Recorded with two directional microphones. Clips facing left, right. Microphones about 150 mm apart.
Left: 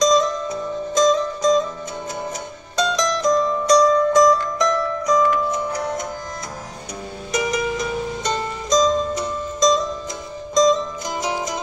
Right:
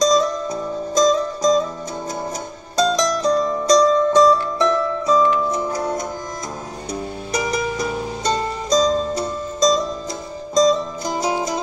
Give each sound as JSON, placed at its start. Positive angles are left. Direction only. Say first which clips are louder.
{"t": 0.0, "sound": "music", "louder": "even", "side_deg": -35}
{"t": 2.7, "sound": "music", "louder": "right 3 dB", "side_deg": -35}
{"t": 7.3, "sound": "music", "louder": "even", "side_deg": -35}